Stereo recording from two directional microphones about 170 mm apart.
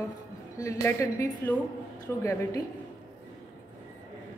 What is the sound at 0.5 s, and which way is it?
A woman's voice, 20° left (ahead or behind).